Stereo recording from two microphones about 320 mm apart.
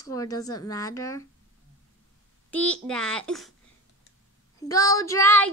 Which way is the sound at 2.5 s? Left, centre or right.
Centre.